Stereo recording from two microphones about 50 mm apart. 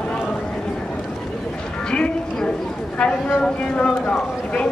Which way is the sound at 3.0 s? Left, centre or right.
Centre.